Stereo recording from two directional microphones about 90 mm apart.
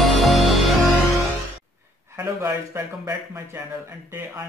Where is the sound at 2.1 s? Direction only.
30° right (ahead or behind).